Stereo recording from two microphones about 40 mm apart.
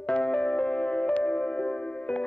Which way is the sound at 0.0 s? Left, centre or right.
Left.